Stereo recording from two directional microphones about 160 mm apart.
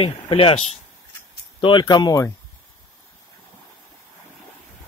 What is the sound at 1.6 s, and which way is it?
Speech, 25° left (ahead or behind).